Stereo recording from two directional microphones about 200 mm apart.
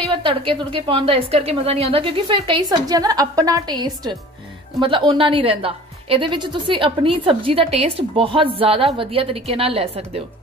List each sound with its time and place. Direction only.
0.1 s a woman's voice: 25° right (ahead or behind)